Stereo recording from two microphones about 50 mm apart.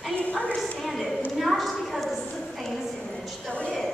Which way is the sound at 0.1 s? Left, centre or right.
Left.